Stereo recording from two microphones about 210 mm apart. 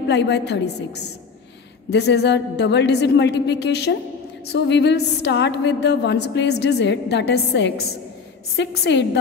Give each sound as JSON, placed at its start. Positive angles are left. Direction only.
{"t": 0.1, "sound": "a woman's voice", "side_deg": 55}